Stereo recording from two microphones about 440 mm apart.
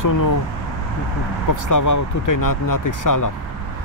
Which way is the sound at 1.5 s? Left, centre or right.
Left.